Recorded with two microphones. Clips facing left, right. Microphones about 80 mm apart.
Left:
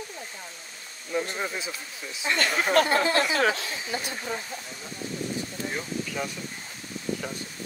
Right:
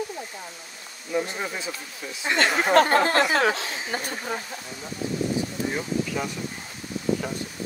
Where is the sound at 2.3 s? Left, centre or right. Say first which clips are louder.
Right 4 dB; right.